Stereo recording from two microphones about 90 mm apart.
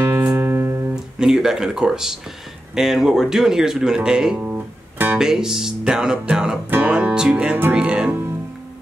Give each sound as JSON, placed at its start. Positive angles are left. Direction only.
{"t": 0.0, "sound": "music", "side_deg": -30}
{"t": 1.2, "sound": "speech", "side_deg": -5}
{"t": 5.2, "sound": "speech", "side_deg": -5}